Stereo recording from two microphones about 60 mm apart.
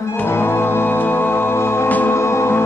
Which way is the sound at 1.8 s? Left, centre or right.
Left.